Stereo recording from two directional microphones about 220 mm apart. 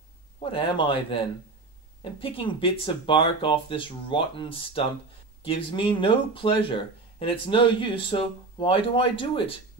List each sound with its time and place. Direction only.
0.4 s speech: 25° left (ahead or behind)
2.1 s speech: 25° left (ahead or behind)